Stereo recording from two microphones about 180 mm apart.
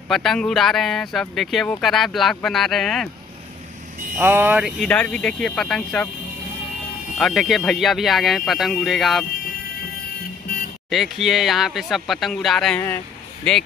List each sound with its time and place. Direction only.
0.1 s speech: centre (ahead or behind)
4.2 s speech: 10° right (ahead or behind)
4.8 s speech: 5° left (ahead or behind)
7.2 s speech: centre (ahead or behind)
10.9 s speech: centre (ahead or behind)